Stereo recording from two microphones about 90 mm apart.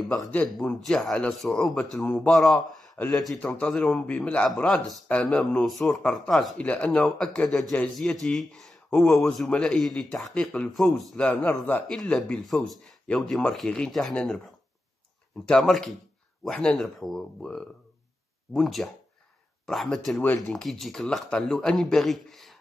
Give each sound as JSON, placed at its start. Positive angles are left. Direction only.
{"t": 0.6, "sound": "speech", "side_deg": 5}
{"t": 3.3, "sound": "speech", "side_deg": 15}
{"t": 6.6, "sound": "speech", "side_deg": 15}
{"t": 11.2, "sound": "speech", "side_deg": 15}
{"t": 11.9, "sound": "speech", "side_deg": 5}
{"t": 15.4, "sound": "speech", "side_deg": 10}
{"t": 18.5, "sound": "speech", "side_deg": 0}